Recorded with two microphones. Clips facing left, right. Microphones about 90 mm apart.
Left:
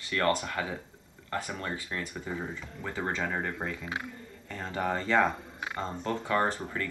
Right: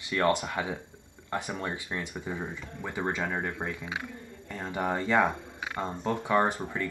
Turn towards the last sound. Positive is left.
turn(degrees=-15)  # may be behind; listen again after turning